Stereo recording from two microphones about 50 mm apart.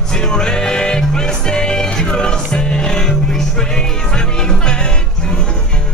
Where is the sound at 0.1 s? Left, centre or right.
Centre.